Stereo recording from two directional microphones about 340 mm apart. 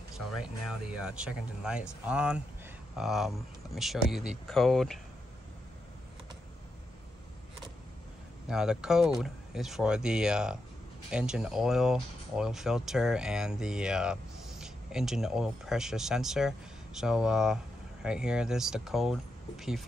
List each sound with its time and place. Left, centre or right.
0.2 s speech: centre
8.5 s speech: centre